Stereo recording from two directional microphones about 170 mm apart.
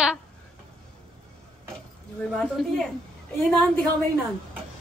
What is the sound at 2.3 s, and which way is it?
Speech, 5° left (ahead or behind).